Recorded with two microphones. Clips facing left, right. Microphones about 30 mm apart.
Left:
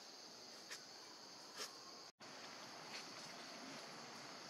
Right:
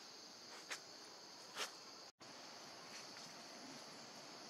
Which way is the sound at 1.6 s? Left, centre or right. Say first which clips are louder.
Right 5 dB; right.